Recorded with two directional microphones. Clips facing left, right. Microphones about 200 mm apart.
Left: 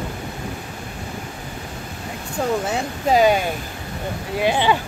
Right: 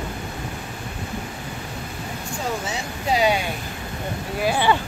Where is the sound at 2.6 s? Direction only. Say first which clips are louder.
Left 5 dB; 50° left (ahead or behind).